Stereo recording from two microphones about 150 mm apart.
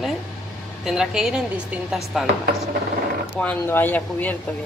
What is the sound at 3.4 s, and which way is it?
Speech, 10° left (ahead or behind).